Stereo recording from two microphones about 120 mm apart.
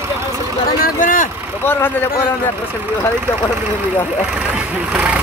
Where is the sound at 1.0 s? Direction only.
90° left.